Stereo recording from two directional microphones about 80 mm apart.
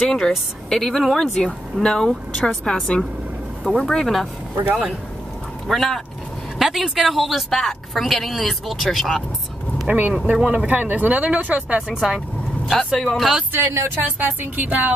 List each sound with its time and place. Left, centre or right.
0.0 s a woman's voice: centre
5.7 s a woman's voice: centre
9.8 s speech: right
10.3 s speech: centre
11.9 s a woman's voice: centre
13.7 s speech: right
14.0 s speech: right